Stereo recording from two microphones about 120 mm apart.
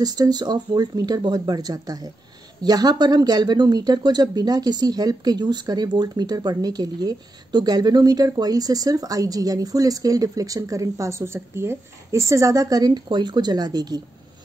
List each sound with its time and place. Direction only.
0.0 s speech: 35° right (ahead or behind)